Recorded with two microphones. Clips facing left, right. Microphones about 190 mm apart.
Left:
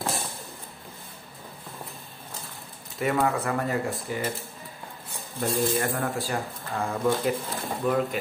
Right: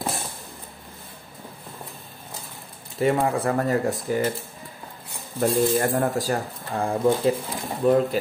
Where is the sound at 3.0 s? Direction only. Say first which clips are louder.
Right 4 dB; 30° right (ahead or behind).